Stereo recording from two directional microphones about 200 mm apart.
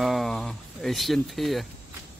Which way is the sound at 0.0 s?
Centre (ahead or behind).